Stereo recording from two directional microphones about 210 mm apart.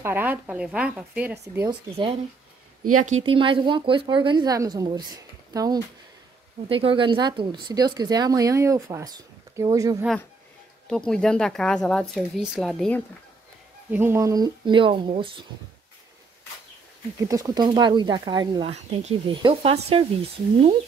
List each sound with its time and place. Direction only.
0.0 s speech: 10° right (ahead or behind)
3.0 s a woman's voice: 30° right (ahead or behind); by 10.0 s 15° right (ahead or behind)
10.9 s speech: 5° left (ahead or behind)
13.8 s a woman's voice: 10° right (ahead or behind)
17.2 s a woman's voice: 15° right (ahead or behind)
18.7 s a woman's voice: 30° right (ahead or behind)